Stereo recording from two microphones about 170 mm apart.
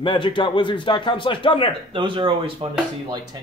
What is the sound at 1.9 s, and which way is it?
Speech, 30° right (ahead or behind).